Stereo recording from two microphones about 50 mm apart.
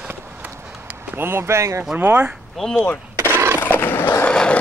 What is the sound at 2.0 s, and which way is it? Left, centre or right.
Speech, right.